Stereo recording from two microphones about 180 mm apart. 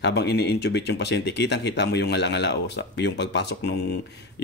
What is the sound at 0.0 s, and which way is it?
Speech, 70° left (ahead or behind).